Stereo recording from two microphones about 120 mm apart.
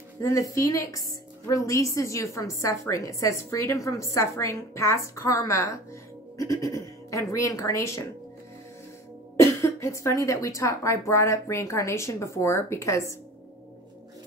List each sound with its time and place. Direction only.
0.2 s a woman's voice: 25° left (ahead or behind)
9.4 s a woman's voice: 25° left (ahead or behind)